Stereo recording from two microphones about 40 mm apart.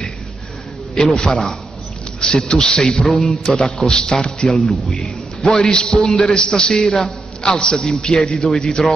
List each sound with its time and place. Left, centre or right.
1.0 s a man's voice: left
3.1 s speech: centre
3.7 s a man's voice: centre
4.9 s a sound: centre
5.7 s a man's voice: left